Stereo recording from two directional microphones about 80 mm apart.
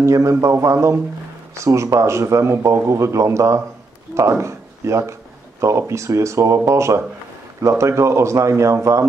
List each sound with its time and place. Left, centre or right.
0.0 s speech: right